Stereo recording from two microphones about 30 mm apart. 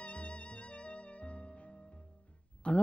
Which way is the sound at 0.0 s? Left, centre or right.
Left.